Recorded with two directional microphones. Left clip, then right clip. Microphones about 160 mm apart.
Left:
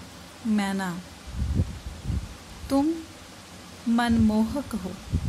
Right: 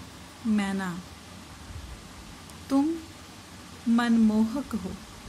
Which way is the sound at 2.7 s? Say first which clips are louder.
Left 1 dB; 15° left (ahead or behind).